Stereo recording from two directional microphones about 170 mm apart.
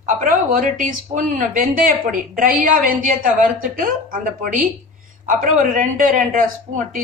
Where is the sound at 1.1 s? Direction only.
50° right (ahead or behind).